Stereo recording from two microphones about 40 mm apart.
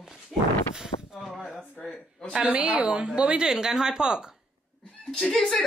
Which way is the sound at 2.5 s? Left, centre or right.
Right.